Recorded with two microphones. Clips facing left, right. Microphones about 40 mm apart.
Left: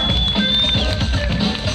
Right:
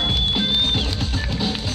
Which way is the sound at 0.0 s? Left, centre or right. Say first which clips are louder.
Left 2 dB; left.